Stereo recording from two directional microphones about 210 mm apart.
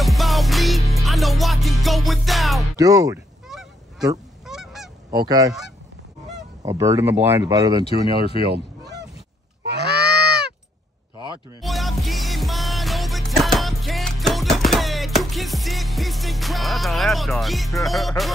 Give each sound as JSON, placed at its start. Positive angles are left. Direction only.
{"t": 0.0, "sound": "music", "side_deg": 0}
{"t": 2.8, "sound": "speech", "side_deg": -15}
{"t": 4.5, "sound": "goose", "side_deg": 0}
{"t": 6.6, "sound": "speech", "side_deg": -15}
{"t": 7.8, "sound": "speech", "side_deg": 25}
{"t": 9.8, "sound": "goose", "side_deg": -50}
{"t": 11.6, "sound": "music", "side_deg": 0}